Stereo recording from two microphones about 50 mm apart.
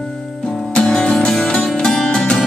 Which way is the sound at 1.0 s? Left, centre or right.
Left.